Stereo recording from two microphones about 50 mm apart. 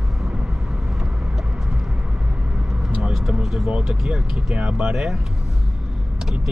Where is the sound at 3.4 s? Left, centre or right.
Centre.